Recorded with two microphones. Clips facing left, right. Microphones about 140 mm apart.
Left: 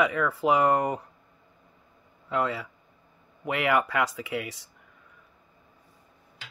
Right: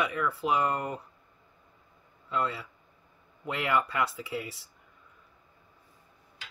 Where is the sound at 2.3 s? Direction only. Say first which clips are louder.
Left 4 dB; 90° left.